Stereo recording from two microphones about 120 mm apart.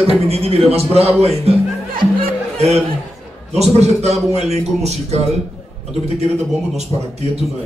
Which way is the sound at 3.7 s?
65° right (ahead or behind).